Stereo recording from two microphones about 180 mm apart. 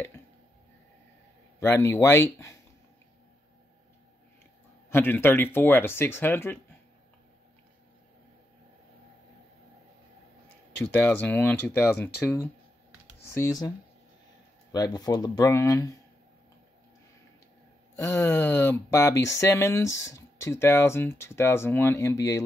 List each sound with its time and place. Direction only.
1.6 s speech: 15° left (ahead or behind)
4.8 s speech: 10° left (ahead or behind)
10.8 s speech: 10° left (ahead or behind)
17.9 s speech: 15° left (ahead or behind)